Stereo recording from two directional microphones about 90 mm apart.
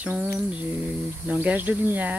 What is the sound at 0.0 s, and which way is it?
Speech, 15° right (ahead or behind).